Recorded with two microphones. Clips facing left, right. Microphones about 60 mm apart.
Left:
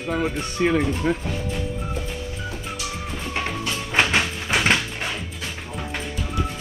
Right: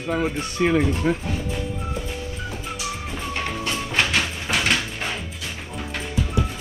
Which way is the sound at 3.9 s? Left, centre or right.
Centre.